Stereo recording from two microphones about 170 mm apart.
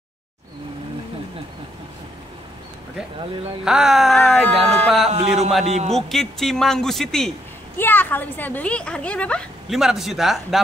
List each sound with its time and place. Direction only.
3.6 s speech: 5° right (ahead or behind)
5.7 s a man's voice: 40° right (ahead or behind)
5.9 s speech: centre (ahead or behind)